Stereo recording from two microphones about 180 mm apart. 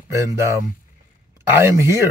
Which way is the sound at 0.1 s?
15° right (ahead or behind).